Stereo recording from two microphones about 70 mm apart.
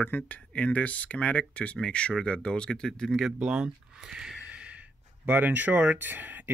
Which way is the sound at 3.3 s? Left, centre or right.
Centre.